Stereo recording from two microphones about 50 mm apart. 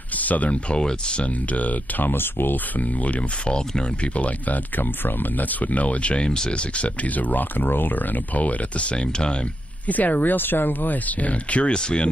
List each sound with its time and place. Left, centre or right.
0.1 s speech: left
9.8 s speech: left; by 12.1 s centre